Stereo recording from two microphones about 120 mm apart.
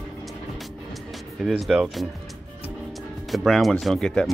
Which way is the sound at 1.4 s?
5° right (ahead or behind).